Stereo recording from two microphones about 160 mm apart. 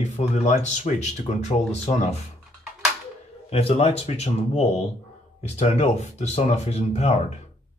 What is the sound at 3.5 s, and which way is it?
Speech, 40° left (ahead or behind).